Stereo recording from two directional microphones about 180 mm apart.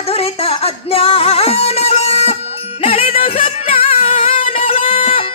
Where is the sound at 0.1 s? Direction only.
35° left (ahead or behind).